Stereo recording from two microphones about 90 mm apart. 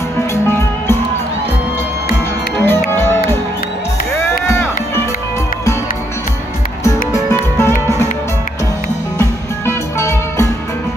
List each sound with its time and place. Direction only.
0.3 s music: 30° left (ahead or behind)
2.6 s music: 25° left (ahead or behind)
4.5 s music: 25° left (ahead or behind)
7.5 s music: 25° left (ahead or behind)
9.7 s music: 30° left (ahead or behind)